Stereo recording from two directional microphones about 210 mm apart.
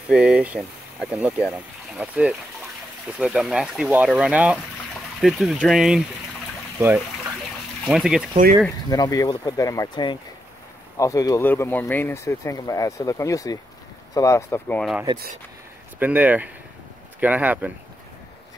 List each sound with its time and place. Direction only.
0.1 s speech: 5° right (ahead or behind)
7.8 s speech: centre (ahead or behind)
8.9 s speech: 15° left (ahead or behind)
16.0 s speech: 10° right (ahead or behind)